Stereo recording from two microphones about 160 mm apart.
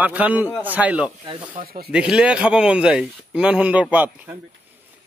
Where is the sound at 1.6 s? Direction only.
45° right (ahead or behind).